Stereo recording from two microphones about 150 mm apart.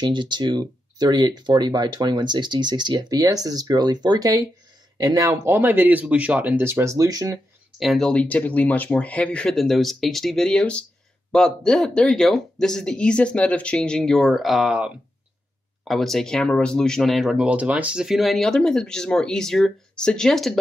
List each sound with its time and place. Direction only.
0.0 s speech: 30° right (ahead or behind)
7.8 s speech: centre (ahead or behind)